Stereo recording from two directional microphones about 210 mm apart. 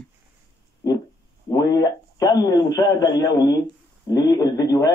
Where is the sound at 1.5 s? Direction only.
20° left (ahead or behind).